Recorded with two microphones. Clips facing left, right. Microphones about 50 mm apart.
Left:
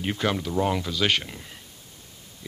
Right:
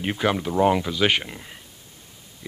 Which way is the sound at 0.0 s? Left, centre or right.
Centre.